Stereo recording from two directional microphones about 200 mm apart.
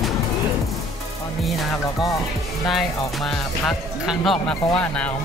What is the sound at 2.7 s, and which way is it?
Music, centre (ahead or behind).